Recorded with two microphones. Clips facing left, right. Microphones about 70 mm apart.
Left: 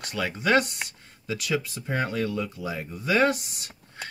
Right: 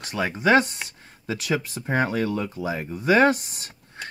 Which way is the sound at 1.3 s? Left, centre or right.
Right.